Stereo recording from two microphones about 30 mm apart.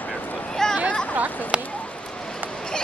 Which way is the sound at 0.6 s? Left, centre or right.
Centre.